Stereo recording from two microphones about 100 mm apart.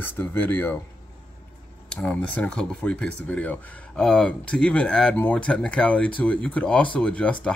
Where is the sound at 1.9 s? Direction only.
10° left (ahead or behind).